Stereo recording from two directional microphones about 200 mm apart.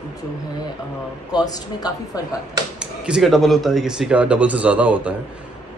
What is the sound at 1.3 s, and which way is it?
Speech, 20° left (ahead or behind).